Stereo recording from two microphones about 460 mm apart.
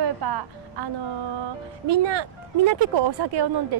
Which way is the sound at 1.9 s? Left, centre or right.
Right.